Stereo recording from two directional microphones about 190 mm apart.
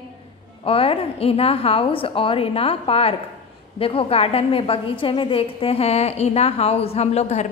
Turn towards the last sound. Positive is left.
turn(degrees=35)  # may be behind; listen again after turning